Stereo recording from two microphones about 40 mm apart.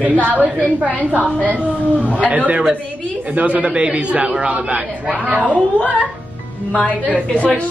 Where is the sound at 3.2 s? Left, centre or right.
Right.